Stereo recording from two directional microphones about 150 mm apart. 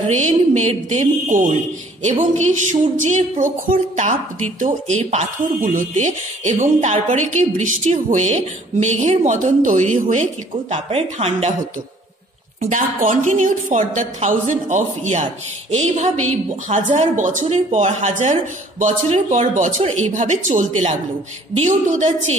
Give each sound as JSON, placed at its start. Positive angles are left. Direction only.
{"t": 0.1, "sound": "a woman's voice", "side_deg": -50}
{"t": 10.7, "sound": "speech", "side_deg": -40}
{"t": 12.6, "sound": "a woman's voice", "side_deg": -55}